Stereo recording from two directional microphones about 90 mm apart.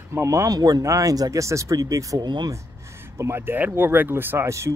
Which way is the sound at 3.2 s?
25° right (ahead or behind).